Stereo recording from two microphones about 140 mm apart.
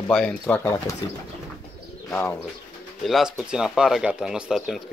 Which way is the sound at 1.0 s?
30° left (ahead or behind).